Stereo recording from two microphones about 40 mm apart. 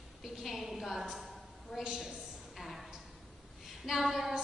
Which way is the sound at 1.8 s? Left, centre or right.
Centre.